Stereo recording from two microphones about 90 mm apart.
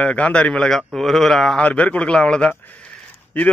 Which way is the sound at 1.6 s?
15° left (ahead or behind).